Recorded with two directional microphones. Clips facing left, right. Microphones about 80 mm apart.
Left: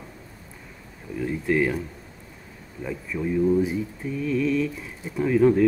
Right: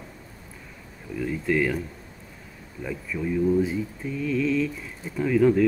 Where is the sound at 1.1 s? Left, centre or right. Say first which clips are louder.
Left 1 dB; left.